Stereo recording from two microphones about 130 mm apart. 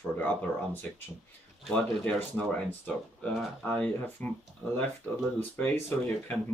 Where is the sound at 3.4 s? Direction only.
Centre (ahead or behind).